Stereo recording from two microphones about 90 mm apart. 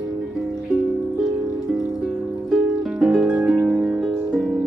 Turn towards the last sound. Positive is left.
turn(degrees=-5)  # may be behind; listen again after turning